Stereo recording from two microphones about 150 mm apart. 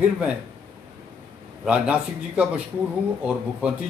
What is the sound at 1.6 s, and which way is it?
Speech, 5° right (ahead or behind).